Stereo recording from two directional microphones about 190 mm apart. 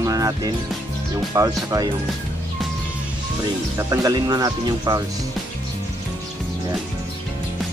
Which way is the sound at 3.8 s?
20° right (ahead or behind).